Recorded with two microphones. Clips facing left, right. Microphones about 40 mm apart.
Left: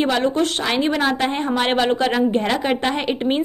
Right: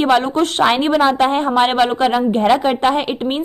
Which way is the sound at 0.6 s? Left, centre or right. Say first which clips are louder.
Right 6 dB; right.